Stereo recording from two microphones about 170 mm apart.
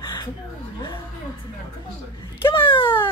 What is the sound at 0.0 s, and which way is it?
Chuckle, 25° left (ahead or behind).